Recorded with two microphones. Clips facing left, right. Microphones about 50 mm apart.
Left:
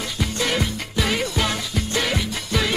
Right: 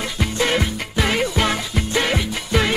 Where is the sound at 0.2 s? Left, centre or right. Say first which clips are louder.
Right 3 dB; right.